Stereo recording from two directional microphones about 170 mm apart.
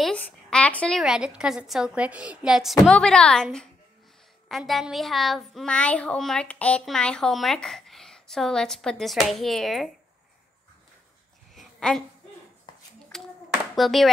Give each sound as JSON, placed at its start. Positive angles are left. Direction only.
{"t": 0.0, "sound": "speech", "side_deg": 5}
{"t": 11.5, "sound": "a sound", "side_deg": 0}
{"t": 13.1, "sound": "clapping", "side_deg": 0}